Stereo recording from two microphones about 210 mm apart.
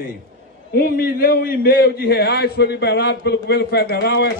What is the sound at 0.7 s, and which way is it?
A man's voice, 45° left (ahead or behind).